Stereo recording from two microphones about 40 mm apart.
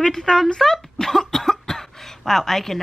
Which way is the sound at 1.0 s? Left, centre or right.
Centre.